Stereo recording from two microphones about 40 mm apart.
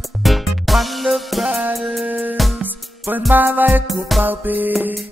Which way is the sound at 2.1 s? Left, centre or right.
Right.